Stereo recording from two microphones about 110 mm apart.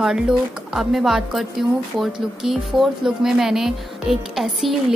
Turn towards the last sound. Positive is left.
turn(degrees=0)  # may be behind; listen again after turning